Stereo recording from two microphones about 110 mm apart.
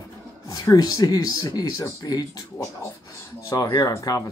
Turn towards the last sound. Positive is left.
turn(degrees=30)  # may be behind; listen again after turning